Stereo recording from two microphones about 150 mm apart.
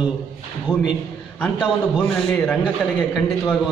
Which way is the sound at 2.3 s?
10° left (ahead or behind).